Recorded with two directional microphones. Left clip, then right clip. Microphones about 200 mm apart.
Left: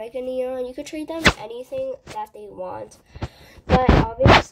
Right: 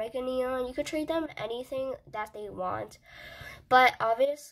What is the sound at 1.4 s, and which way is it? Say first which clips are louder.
Speech: left 5 dB; 55° right (ahead or behind).